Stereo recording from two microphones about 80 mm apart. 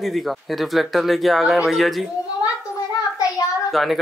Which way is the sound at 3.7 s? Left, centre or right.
Centre.